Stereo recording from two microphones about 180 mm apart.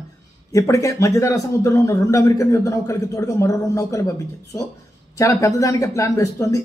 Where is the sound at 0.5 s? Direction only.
15° left (ahead or behind).